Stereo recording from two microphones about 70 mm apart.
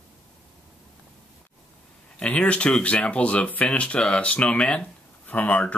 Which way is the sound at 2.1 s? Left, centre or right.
Centre.